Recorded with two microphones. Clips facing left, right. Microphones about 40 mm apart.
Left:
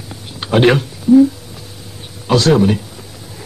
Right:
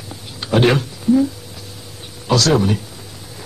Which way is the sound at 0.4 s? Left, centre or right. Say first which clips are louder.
Left 2 dB; left.